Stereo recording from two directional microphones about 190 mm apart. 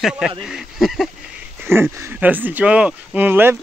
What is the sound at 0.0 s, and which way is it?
Speech, 5° right (ahead or behind).